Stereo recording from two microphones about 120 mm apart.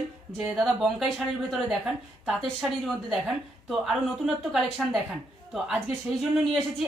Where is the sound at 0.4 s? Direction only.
5° right (ahead or behind).